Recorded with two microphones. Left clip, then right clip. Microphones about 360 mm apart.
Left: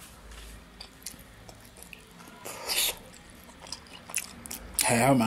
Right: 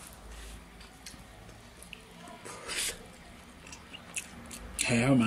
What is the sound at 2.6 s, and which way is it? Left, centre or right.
Music, centre.